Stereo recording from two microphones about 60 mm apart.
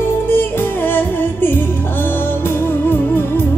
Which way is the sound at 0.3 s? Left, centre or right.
Left.